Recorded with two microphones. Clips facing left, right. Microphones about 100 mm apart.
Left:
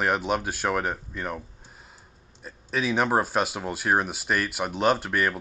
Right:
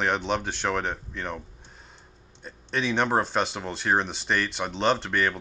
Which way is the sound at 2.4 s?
5° left (ahead or behind).